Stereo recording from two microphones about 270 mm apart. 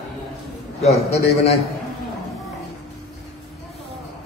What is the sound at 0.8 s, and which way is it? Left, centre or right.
Speech, left.